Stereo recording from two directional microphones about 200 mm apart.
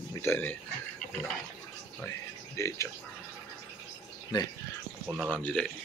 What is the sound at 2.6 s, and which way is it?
Speech, 15° left (ahead or behind).